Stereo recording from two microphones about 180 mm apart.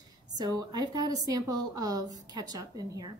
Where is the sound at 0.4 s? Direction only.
20° right (ahead or behind).